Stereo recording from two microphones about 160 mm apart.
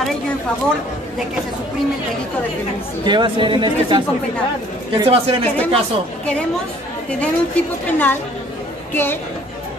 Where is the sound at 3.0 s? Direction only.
30° right (ahead or behind).